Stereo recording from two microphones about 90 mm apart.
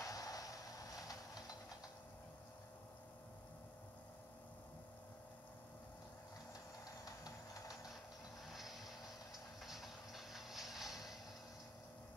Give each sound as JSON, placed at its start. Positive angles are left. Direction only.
{"t": 0.0, "sound": "vehicle", "side_deg": 40}
{"t": 8.5, "sound": "vehicle", "side_deg": 0}